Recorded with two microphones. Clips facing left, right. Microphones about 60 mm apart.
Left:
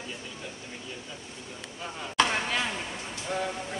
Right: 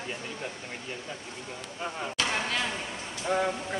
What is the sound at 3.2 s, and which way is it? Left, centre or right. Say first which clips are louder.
Speech: right 5 dB; right.